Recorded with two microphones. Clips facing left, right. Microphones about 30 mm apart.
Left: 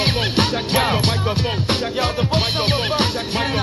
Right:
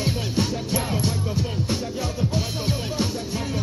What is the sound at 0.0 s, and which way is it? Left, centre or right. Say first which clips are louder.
Music: left 6 dB; left.